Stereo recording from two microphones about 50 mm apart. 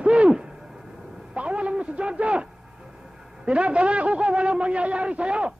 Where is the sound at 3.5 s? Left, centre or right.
Right.